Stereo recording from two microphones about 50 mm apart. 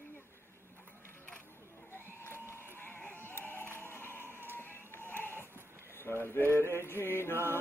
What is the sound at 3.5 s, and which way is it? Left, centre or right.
Music, left.